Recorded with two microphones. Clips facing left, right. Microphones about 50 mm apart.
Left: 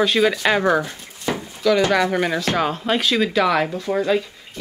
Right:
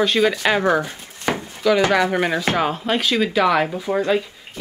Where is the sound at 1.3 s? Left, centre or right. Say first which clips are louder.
Right 2 dB; right.